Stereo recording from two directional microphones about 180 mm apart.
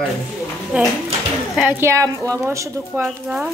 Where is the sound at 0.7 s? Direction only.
5° right (ahead or behind).